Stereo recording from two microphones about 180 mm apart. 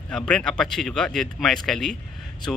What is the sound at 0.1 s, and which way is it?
Speech, 5° left (ahead or behind).